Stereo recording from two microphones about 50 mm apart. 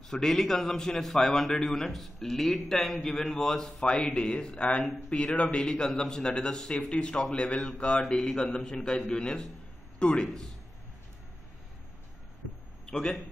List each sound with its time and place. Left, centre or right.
0.1 s a man's voice: centre
3.8 s a man's voice: centre
12.9 s a man's voice: centre